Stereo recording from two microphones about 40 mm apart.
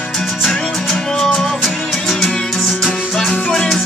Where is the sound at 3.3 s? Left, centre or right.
Left.